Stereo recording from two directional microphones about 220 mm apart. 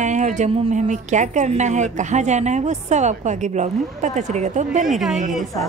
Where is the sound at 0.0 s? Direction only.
35° right (ahead or behind).